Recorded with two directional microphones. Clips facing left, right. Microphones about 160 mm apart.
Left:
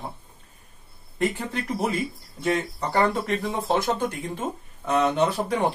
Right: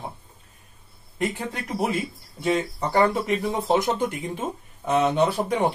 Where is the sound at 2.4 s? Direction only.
15° right (ahead or behind).